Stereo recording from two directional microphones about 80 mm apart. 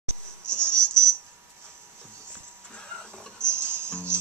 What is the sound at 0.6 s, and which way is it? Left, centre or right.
Music, right.